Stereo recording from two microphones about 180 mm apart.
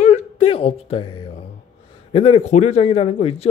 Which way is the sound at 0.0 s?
35° left (ahead or behind).